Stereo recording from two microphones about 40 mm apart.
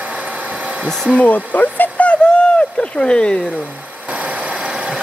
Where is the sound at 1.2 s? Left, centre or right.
Left.